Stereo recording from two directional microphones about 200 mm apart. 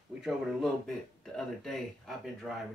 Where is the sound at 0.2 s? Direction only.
Centre (ahead or behind).